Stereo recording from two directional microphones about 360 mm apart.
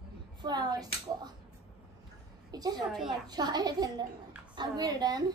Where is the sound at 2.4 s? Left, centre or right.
Centre.